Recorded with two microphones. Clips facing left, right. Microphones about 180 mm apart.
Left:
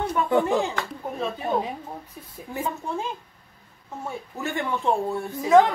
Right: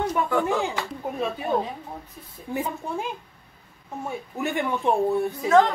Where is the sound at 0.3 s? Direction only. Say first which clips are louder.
Left 6 dB; 20° left (ahead or behind).